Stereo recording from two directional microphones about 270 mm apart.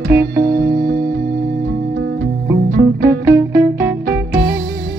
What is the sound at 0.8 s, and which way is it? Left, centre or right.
Music, right.